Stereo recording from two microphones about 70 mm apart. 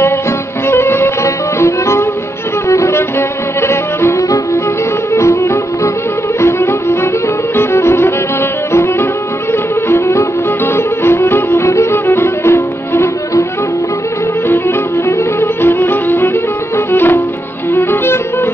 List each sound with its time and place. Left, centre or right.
0.7 s music: left
9.5 s music: left
15.0 s music: left